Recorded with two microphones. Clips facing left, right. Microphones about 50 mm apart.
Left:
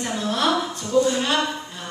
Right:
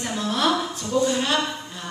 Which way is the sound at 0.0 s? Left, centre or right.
Centre.